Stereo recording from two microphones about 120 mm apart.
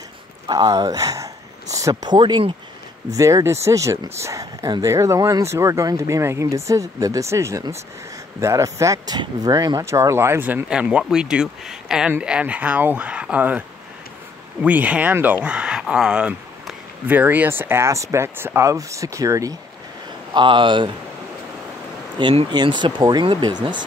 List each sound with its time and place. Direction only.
0.5 s speech: 35° right (ahead or behind)
3.2 s speech: 25° right (ahead or behind)
20.3 s speech: 40° right (ahead or behind)
22.2 s speech: 45° right (ahead or behind)